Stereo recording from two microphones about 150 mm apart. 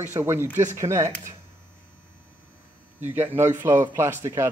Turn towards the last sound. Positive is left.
turn(degrees=-20)  # may be behind; listen again after turning